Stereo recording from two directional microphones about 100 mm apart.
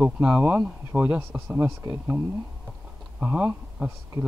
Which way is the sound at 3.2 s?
15° right (ahead or behind).